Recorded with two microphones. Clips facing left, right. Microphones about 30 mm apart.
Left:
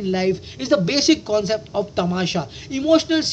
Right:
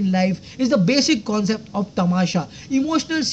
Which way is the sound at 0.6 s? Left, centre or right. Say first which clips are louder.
Right 3 dB; left.